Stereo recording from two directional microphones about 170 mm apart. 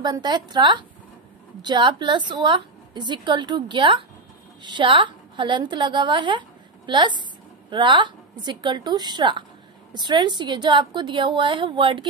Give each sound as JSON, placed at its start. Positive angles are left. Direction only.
{"t": 0.0, "sound": "a woman's voice", "side_deg": -25}